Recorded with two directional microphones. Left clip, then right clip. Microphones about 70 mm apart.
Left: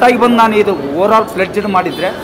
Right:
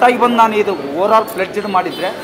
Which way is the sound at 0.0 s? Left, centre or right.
Centre.